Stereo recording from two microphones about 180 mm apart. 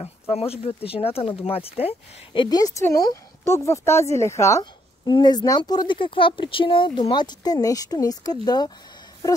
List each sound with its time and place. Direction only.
0.0 s speech: 35° left (ahead or behind)